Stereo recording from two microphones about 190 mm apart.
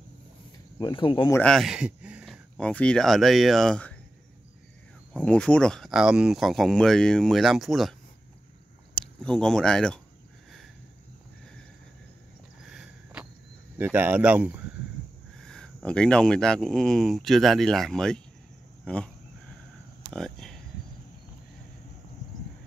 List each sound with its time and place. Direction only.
0.7 s speech: 25° left (ahead or behind)
1.3 s speech: 5° left (ahead or behind)
5.1 s speech: 5° left (ahead or behind)
8.9 s speech: 5° left (ahead or behind)
12.6 s a sound: 5° right (ahead or behind)
13.7 s speech: 10° right (ahead or behind)
15.4 s speech: 5° left (ahead or behind)
20.1 s a sound: centre (ahead or behind)